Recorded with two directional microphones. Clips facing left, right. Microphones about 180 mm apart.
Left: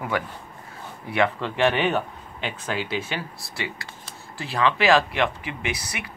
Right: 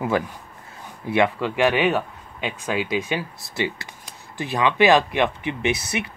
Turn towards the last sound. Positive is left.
turn(degrees=-25)  # may be behind; listen again after turning